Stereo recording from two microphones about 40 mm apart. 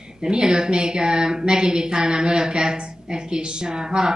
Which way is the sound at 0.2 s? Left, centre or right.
Centre.